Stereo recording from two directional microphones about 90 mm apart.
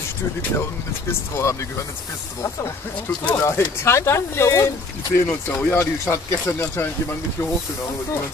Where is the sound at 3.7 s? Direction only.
30° left (ahead or behind).